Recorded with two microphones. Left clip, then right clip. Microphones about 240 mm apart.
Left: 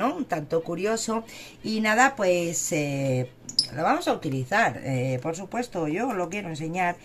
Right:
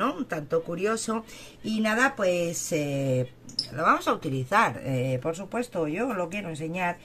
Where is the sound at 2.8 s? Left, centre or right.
Centre.